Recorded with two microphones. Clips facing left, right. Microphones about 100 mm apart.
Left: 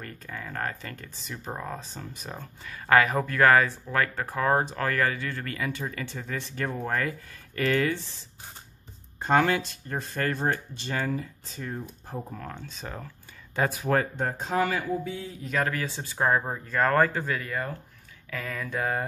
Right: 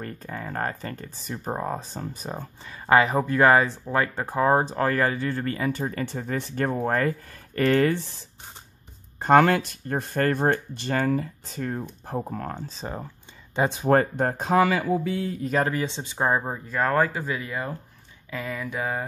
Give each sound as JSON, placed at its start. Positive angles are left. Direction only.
{"t": 0.0, "sound": "speech", "side_deg": -35}
{"t": 2.6, "sound": "speech", "side_deg": -25}
{"t": 9.2, "sound": "speech", "side_deg": -55}
{"t": 13.8, "sound": "speech", "side_deg": -45}
{"t": 14.5, "sound": "a sound", "side_deg": -90}
{"t": 15.6, "sound": "speech", "side_deg": -25}
{"t": 18.6, "sound": "a sound", "side_deg": -5}